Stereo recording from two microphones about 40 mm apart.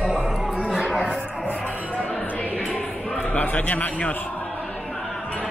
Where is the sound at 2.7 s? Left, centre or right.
Left.